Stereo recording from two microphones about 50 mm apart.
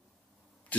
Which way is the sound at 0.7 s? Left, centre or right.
Left.